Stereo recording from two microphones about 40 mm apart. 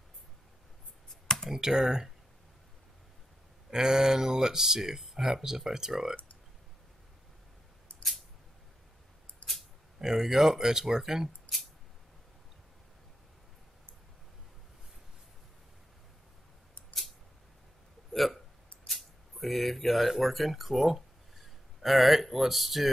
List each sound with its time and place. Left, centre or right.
1.2 s computer keyboard: centre
1.5 s speech: centre
3.7 s speech: centre
9.4 s a sound: left
9.9 s speech: centre
18.1 s hiccup: centre
18.9 s speech: centre